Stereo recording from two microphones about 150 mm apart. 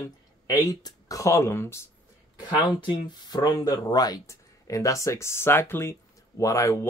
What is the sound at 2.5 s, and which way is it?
Speech, 30° left (ahead or behind).